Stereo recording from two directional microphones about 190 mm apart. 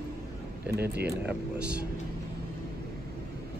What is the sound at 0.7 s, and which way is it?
Speech, 55° right (ahead or behind).